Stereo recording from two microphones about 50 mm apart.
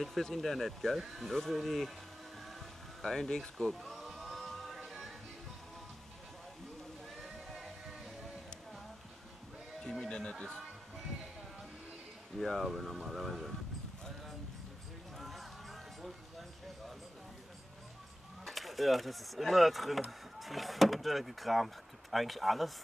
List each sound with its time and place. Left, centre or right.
0.0 s speech: centre
3.0 s music: centre
9.8 s music: centre
12.4 s speech: centre
15.1 s a sound: centre
18.4 s speech: centre